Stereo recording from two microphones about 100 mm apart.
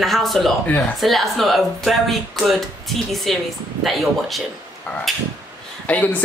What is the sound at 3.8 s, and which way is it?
Speech, centre (ahead or behind).